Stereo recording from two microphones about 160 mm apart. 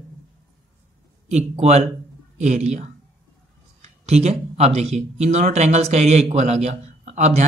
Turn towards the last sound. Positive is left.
turn(degrees=-45)  # may be behind; listen again after turning